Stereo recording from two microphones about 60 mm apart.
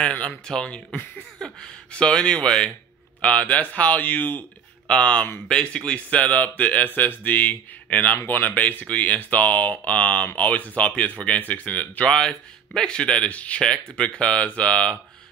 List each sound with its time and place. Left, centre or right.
0.0 s speech: centre
4.8 s speech: centre
12.1 s speech: centre